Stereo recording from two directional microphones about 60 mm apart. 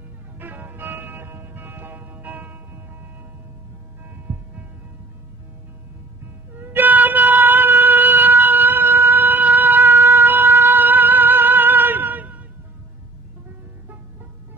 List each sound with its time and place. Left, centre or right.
0.4 s music: right
6.5 s music: right
9.1 s siren: right
10.2 s music: right